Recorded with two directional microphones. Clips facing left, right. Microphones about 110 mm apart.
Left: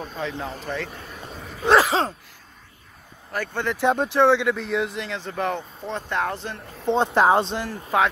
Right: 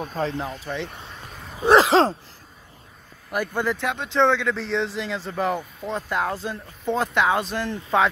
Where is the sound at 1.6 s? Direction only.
20° right (ahead or behind).